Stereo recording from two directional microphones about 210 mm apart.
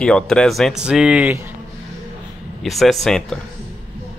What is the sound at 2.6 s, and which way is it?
Speech, centre (ahead or behind).